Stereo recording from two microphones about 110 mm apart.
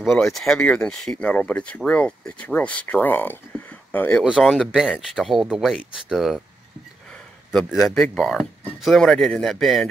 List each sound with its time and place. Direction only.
0.0 s speech: centre (ahead or behind)
4.2 s a man's voice: centre (ahead or behind)
7.5 s a man's voice: centre (ahead or behind)